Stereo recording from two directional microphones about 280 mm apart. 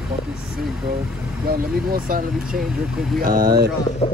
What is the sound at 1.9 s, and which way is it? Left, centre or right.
Speech, right.